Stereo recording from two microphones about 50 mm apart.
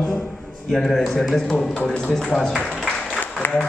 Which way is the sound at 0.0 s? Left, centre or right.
Centre.